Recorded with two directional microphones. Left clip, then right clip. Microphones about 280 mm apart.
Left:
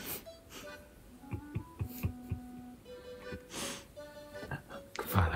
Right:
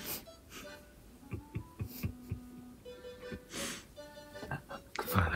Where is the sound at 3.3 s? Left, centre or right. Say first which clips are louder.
Even; centre.